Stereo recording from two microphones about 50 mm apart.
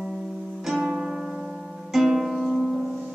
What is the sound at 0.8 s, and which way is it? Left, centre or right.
Music, centre.